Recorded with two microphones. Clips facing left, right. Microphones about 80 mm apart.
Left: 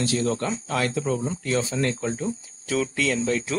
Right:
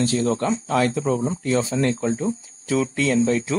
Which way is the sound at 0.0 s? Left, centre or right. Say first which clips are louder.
Right 3 dB; right.